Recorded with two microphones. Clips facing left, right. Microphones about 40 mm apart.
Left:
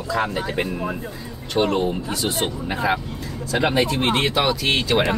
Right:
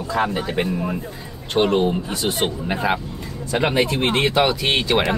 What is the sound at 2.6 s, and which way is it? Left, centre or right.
Speech, centre.